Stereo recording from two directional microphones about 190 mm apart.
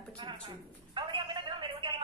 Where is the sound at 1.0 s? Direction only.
25° right (ahead or behind).